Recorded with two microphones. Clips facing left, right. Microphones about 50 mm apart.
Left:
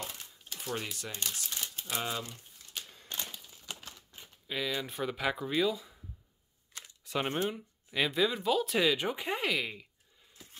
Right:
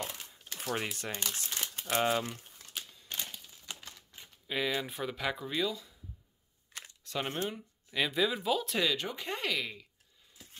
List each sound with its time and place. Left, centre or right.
0.8 s speech: right
4.5 s speech: centre
7.1 s speech: centre
10.3 s a sound: centre